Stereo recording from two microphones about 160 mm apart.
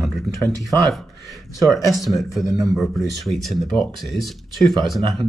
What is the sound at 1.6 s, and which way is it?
Speech, centre (ahead or behind).